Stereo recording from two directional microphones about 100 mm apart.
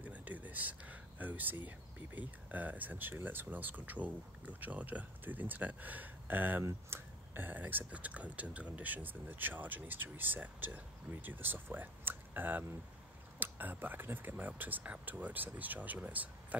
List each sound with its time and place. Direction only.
0.0 s speech: 15° right (ahead or behind)